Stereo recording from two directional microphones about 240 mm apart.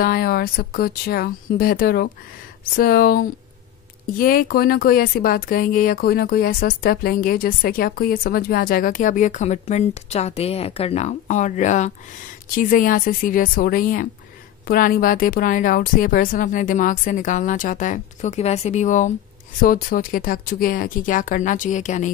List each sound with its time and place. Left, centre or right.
0.0 s speech: left